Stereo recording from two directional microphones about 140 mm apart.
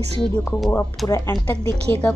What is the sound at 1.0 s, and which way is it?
Speech, 10° left (ahead or behind).